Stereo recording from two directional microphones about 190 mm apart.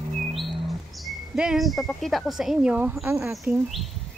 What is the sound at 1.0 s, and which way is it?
Speech, 5° right (ahead or behind).